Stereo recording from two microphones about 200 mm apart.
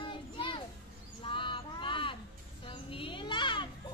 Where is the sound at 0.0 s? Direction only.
25° left (ahead or behind).